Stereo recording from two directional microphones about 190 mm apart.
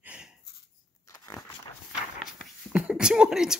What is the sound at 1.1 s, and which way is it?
Crunch, 15° left (ahead or behind).